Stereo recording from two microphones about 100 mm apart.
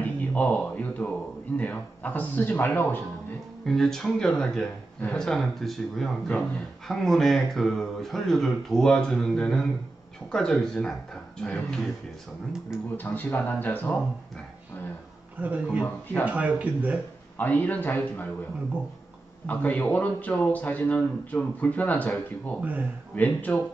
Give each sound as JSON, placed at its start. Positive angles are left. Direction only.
{"t": 0.0, "sound": "a man's voice", "side_deg": 15}
{"t": 3.6, "sound": "speech", "side_deg": 5}
{"t": 12.9, "sound": "speech", "side_deg": 20}
{"t": 15.4, "sound": "speech", "side_deg": -15}
{"t": 15.8, "sound": "speech", "side_deg": 20}
{"t": 16.3, "sound": "speech", "side_deg": -15}
{"t": 17.4, "sound": "a man's voice", "side_deg": 15}
{"t": 19.4, "sound": "a man's voice", "side_deg": 15}
{"t": 22.6, "sound": "speech", "side_deg": -15}
{"t": 23.1, "sound": "a man's voice", "side_deg": 15}